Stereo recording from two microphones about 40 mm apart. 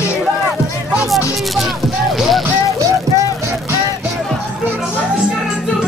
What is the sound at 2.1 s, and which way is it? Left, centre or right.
Vehicle, centre.